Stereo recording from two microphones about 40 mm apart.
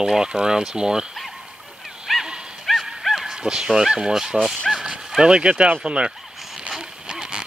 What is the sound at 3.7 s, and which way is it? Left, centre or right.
Speech, centre.